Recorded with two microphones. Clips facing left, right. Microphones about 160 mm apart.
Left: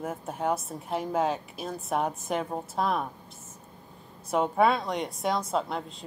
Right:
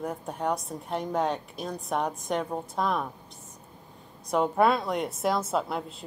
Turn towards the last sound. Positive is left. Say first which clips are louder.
# right 1 dB
turn(degrees=-5)  # may be behind; listen again after turning